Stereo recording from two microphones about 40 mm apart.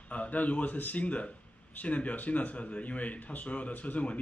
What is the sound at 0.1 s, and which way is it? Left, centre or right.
Speech, left.